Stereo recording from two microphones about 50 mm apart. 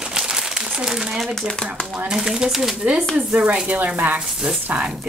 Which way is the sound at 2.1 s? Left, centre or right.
Centre.